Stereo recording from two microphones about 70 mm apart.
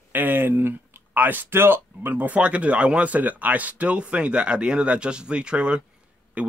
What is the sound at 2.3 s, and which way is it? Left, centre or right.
Speech, centre.